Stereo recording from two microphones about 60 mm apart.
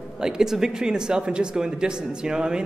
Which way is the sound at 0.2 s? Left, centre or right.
Centre.